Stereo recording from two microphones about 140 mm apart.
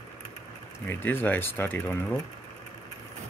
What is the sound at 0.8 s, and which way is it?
Speech, 15° left (ahead or behind).